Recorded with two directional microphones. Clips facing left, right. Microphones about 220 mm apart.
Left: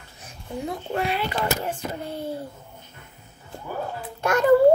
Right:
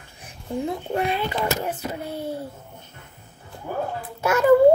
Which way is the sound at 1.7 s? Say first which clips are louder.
Right 1 dB; 10° right (ahead or behind).